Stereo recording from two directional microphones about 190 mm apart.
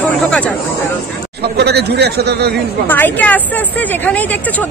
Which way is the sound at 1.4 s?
60° right (ahead or behind).